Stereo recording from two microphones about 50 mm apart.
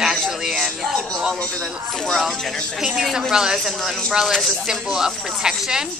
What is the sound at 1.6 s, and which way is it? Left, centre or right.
Speech, centre.